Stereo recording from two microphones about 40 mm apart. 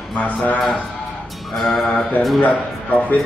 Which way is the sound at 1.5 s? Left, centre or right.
Centre.